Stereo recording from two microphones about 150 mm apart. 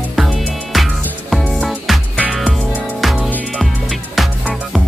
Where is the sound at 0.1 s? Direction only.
Centre (ahead or behind).